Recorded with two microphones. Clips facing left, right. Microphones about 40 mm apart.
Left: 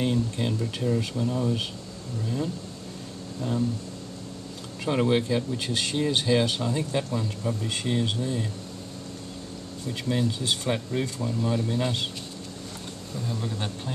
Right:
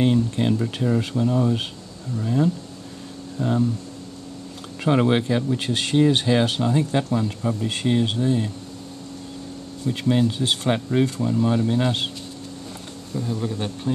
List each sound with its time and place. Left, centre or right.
0.0 s speech: right
3.3 s speech: right
4.8 s speech: right
9.9 s speech: right
13.1 s speech: centre